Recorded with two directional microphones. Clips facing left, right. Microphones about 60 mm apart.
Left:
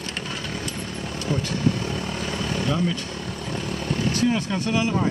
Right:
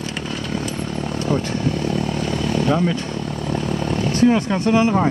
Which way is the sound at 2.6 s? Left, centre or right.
Right.